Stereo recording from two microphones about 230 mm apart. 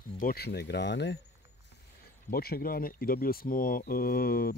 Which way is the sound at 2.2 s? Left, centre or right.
Left.